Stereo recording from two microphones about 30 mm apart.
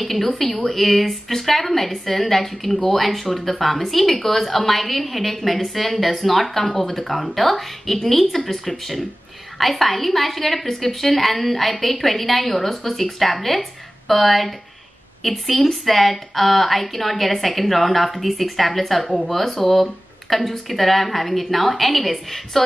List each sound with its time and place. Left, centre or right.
0.0 s a woman's voice: centre
6.8 s a woman's voice: centre
7.1 s a woman's voice: centre
9.6 s a woman's voice: centre